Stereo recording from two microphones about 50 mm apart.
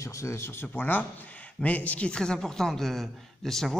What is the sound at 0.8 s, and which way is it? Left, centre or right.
A man's voice, left.